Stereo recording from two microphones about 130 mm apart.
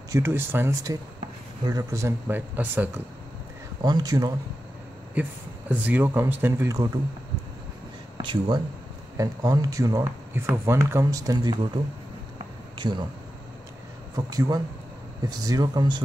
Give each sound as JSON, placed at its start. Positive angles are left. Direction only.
{"t": 0.1, "sound": "speech", "side_deg": -20}
{"t": 3.8, "sound": "speech", "side_deg": -30}
{"t": 5.7, "sound": "speech", "side_deg": -15}
{"t": 8.2, "sound": "speech", "side_deg": -40}
{"t": 9.1, "sound": "speech", "side_deg": -25}
{"t": 12.7, "sound": "speech", "side_deg": -35}
{"t": 14.1, "sound": "speech", "side_deg": -30}